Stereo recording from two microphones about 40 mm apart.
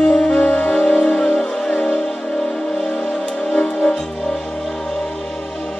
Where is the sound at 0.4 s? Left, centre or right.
Left.